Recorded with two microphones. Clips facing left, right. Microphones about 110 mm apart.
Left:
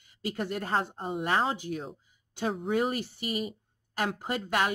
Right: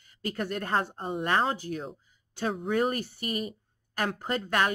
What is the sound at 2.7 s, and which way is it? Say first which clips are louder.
Speech: right 2 dB; 15° left (ahead or behind).